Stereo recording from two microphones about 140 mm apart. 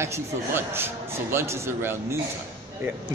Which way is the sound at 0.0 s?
20° right (ahead or behind).